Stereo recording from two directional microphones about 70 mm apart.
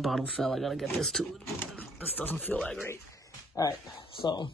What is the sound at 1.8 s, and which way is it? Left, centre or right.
Speech, left.